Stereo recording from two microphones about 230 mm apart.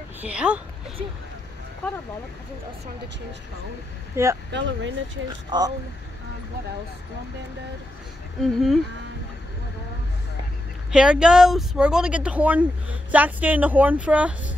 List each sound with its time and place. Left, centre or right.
0.2 s speech: centre
4.1 s speech: centre
4.5 s speech: right
5.5 s speech: centre
8.4 s speech: centre
10.9 s speech: centre